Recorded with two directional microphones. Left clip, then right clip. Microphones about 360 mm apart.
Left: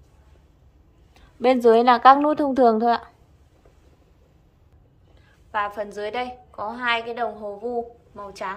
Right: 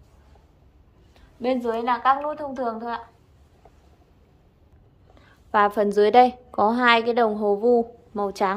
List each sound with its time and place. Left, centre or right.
1.7 s a woman's voice: centre
5.2 s a woman's voice: centre